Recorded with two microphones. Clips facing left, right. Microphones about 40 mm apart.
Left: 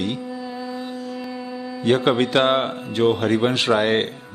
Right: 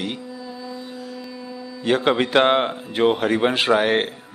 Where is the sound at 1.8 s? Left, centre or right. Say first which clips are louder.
Left 1 dB; centre.